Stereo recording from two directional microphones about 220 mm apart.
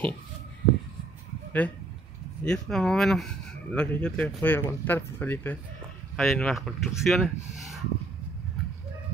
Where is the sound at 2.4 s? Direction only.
5° left (ahead or behind).